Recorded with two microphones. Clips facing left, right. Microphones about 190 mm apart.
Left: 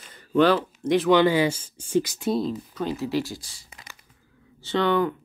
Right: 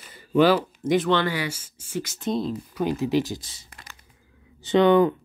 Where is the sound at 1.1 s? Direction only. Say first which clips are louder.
Left 6 dB; 20° left (ahead or behind).